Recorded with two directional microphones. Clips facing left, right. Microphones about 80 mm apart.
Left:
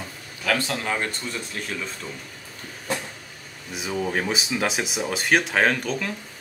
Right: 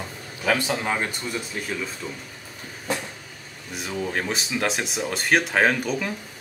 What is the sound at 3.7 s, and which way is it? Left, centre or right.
Speech, centre.